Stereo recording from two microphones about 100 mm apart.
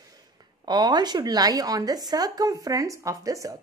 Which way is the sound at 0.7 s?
45° right (ahead or behind).